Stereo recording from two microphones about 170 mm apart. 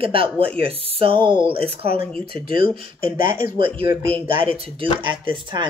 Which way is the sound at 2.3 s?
55° left (ahead or behind).